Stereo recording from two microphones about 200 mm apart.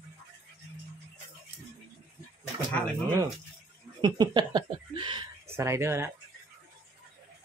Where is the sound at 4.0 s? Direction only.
20° right (ahead or behind).